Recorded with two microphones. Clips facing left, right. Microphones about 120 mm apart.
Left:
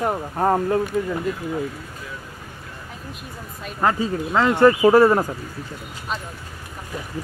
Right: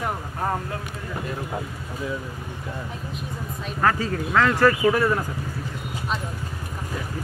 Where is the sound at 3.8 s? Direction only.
20° left (ahead or behind).